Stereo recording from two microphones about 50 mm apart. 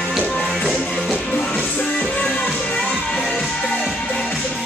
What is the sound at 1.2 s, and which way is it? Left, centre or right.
Music, centre.